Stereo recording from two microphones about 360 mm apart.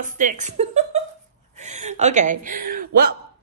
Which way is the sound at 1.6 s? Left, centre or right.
Centre.